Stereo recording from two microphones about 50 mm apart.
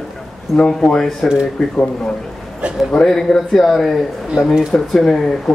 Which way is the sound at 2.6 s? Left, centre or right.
Right.